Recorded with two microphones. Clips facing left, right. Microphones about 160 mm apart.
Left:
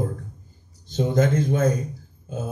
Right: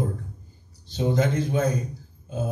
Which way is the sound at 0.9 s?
50° left (ahead or behind).